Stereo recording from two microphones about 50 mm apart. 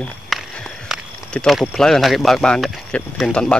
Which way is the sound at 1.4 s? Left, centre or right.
Left.